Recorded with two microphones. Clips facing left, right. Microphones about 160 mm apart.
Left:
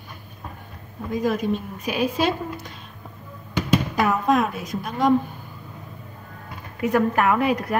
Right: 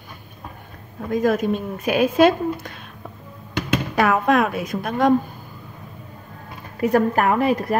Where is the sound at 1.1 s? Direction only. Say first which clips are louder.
Right 4 dB; 50° right (ahead or behind).